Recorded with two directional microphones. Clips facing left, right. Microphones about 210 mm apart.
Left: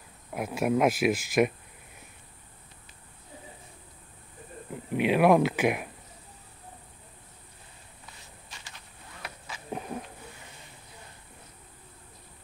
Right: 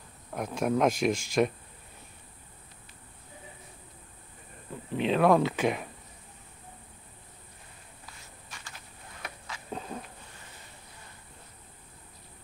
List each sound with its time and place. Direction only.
0.3 s speech: 10° left (ahead or behind)
4.9 s speech: 10° left (ahead or behind)
9.5 s insect: 15° left (ahead or behind)